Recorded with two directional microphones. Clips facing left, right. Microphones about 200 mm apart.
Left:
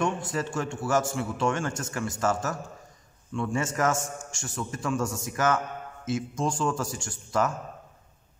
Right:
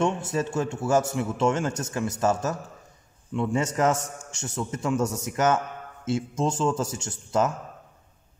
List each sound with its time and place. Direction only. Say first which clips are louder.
0.0 s a man's voice: right 3 dB; 25° right (ahead or behind)